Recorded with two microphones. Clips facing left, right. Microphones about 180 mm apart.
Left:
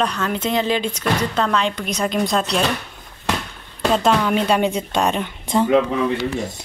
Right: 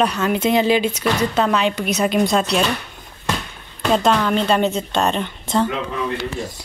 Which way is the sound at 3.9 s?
5° left (ahead or behind).